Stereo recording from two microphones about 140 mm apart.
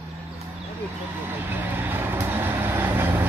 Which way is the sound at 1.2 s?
15° right (ahead or behind).